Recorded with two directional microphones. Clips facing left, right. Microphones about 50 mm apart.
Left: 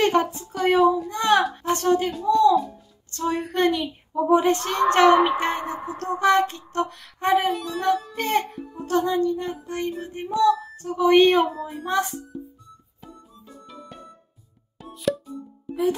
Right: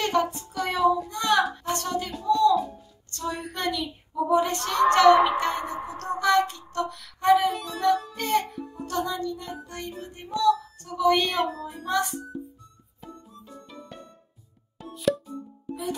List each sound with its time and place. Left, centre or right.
0.0 s speech: left
7.5 s speech: centre
7.8 s speech: left
14.8 s music: centre